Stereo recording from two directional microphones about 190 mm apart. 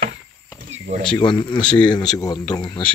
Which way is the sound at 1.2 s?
25° left (ahead or behind).